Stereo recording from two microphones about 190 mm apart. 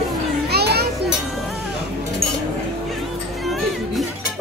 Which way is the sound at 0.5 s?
55° right (ahead or behind).